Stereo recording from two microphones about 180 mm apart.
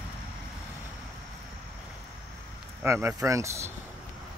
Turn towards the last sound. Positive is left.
turn(degrees=-15)  # may be behind; listen again after turning